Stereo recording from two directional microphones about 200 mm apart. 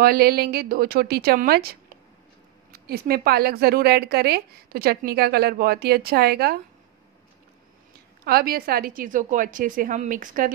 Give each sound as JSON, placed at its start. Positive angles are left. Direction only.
{"t": 0.0, "sound": "speech", "side_deg": -50}
{"t": 8.3, "sound": "speech", "side_deg": -50}